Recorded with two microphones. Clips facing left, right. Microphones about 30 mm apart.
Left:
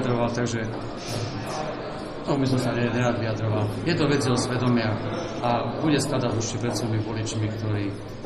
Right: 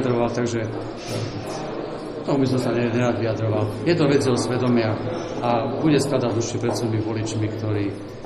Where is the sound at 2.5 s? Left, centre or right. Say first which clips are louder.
Right 3 dB; right.